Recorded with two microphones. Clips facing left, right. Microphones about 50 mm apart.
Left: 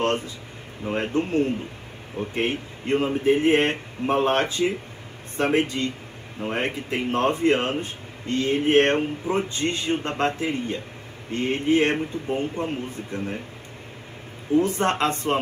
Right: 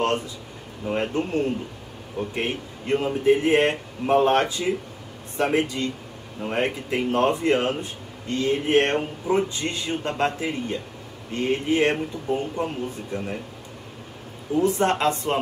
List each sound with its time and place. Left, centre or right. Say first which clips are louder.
0.0 s a man's voice: even; left
14.6 s speech: right 3 dB; left